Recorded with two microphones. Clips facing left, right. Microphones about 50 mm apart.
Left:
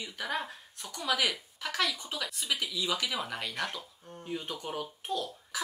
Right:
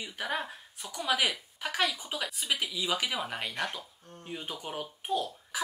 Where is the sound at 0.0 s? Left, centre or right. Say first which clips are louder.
Right 1 dB; centre.